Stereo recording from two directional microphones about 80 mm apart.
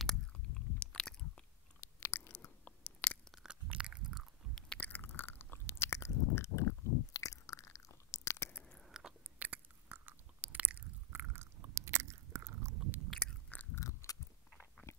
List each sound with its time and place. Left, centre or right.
0.0 s biting: centre
1.8 s chewing: left
3.4 s biting: centre
4.7 s chewing: left
8.6 s chewing: centre
9.4 s chewing: right
13.2 s chewing: centre
13.7 s chewing: left
14.8 s a sound: left